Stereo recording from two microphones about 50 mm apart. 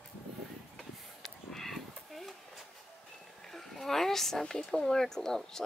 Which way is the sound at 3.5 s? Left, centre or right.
Centre.